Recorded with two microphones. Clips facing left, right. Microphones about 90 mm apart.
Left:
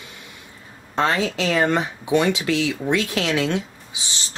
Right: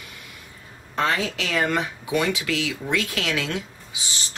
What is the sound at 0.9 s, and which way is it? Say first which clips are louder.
Speech: left 3 dB; 30° left (ahead or behind).